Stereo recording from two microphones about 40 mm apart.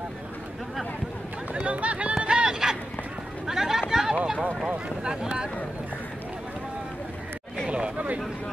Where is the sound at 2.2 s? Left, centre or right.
Right.